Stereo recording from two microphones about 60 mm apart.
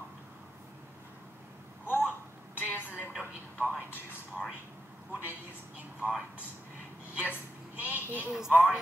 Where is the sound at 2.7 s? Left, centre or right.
Left.